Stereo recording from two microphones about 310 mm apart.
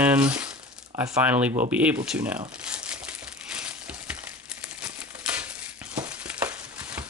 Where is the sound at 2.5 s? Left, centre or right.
Centre.